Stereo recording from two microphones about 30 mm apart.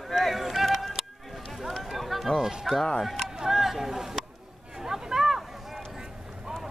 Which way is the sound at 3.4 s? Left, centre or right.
Centre.